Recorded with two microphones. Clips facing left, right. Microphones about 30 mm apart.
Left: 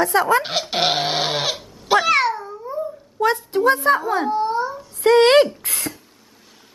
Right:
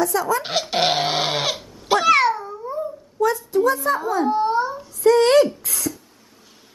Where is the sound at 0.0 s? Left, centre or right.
Left.